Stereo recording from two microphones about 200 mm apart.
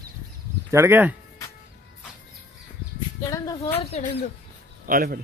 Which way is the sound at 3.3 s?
15° left (ahead or behind).